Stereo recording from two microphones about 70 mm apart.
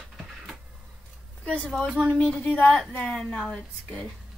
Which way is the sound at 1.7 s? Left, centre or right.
Centre.